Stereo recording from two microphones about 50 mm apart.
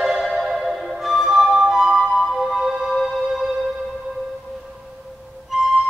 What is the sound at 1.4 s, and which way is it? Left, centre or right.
Flute, centre.